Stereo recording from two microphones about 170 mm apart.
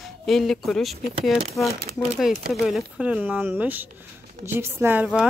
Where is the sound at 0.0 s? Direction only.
Centre (ahead or behind).